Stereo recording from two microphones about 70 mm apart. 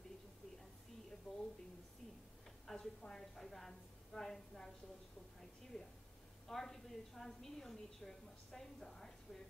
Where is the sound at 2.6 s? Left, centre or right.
Centre.